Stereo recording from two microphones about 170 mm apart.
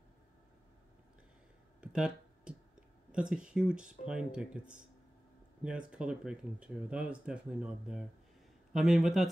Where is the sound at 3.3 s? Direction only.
5° right (ahead or behind).